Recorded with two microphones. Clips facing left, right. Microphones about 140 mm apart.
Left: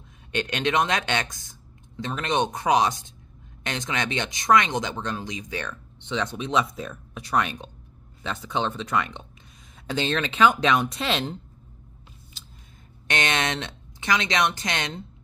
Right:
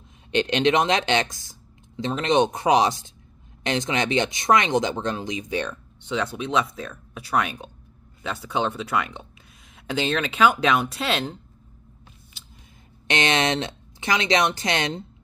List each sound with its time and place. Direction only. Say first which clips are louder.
0.3 s speech: right 5 dB; 25° right (ahead or behind)
5.9 s speech: right 2 dB; 5° right (ahead or behind)
13.0 s speech: right 4 dB; 25° right (ahead or behind)